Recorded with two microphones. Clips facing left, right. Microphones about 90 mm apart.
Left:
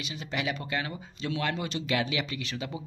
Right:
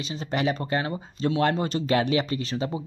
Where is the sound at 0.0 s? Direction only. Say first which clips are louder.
Right 7 dB; 35° right (ahead or behind).